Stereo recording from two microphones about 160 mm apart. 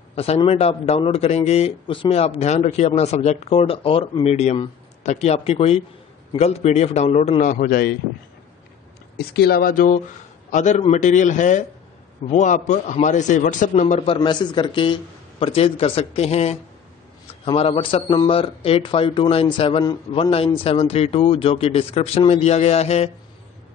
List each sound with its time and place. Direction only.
0.1 s a man's voice: 40° left (ahead or behind); by 7.9 s 65° left (ahead or behind)
9.1 s a man's voice: 85° left; by 14.0 s 50° left (ahead or behind)
14.0 s a man's voice: 30° left (ahead or behind)